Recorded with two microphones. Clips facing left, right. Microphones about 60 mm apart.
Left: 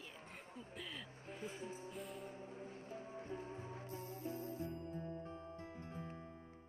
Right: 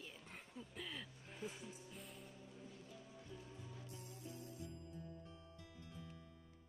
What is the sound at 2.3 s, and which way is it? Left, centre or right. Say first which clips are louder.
Music: left 7 dB; left.